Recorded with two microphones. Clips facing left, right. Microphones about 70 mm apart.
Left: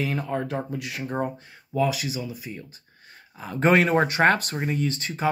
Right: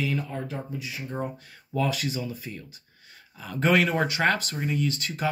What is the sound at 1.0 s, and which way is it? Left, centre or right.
Speech, left.